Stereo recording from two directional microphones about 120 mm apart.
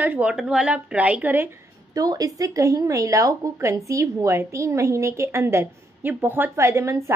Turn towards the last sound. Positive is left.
turn(degrees=-25)  # may be behind; listen again after turning